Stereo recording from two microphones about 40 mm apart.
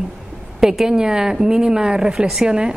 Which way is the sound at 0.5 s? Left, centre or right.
Centre.